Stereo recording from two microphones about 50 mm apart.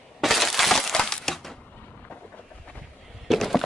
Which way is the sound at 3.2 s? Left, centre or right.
Centre.